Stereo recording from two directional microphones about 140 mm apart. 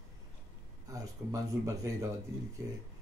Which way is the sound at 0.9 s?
25° right (ahead or behind).